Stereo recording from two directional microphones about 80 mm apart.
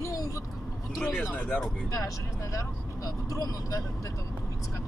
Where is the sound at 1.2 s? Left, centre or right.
Centre.